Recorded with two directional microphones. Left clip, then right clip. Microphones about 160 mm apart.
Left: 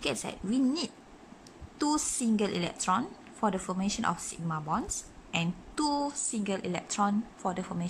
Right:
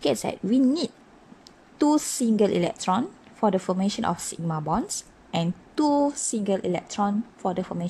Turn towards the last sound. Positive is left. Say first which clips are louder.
# right 6 dB
turn(degrees=-15)  # may be behind; listen again after turning